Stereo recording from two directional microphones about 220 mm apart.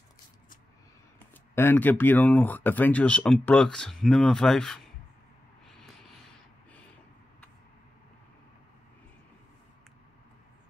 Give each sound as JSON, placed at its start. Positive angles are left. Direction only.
{"t": 1.5, "sound": "speech", "side_deg": 10}